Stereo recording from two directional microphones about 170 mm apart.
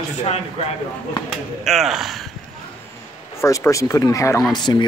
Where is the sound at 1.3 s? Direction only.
Centre (ahead or behind).